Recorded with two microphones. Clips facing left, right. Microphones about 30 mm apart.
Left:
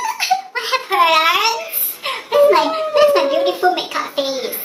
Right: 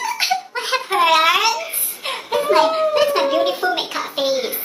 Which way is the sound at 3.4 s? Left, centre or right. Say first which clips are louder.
Left 3 dB; centre.